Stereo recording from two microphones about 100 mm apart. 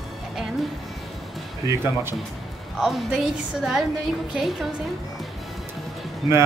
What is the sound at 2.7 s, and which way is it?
A woman's voice, 5° right (ahead or behind).